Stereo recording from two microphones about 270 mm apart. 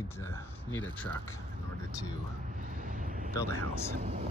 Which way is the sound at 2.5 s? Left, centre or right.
Right.